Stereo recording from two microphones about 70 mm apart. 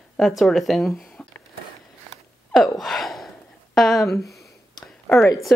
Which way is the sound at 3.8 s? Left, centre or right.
Centre.